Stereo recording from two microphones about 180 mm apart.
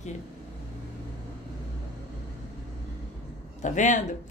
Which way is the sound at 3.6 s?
40° left (ahead or behind).